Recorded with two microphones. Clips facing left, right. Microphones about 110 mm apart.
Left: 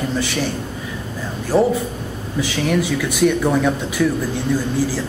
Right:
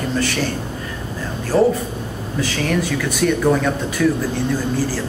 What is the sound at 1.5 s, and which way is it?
Speech, 15° left (ahead or behind).